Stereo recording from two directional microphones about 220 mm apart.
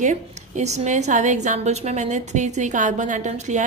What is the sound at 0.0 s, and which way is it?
A woman's voice, 30° right (ahead or behind).